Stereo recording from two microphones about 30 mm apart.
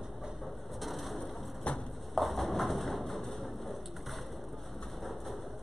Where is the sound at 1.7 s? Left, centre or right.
Left.